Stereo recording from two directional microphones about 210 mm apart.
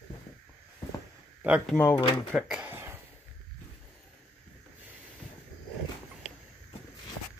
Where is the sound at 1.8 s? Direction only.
10° left (ahead or behind).